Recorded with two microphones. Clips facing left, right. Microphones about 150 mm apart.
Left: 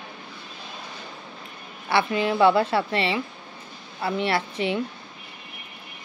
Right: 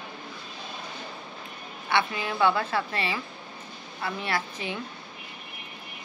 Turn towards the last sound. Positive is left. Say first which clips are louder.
# left 6 dB
turn(degrees=30)  # may be behind; listen again after turning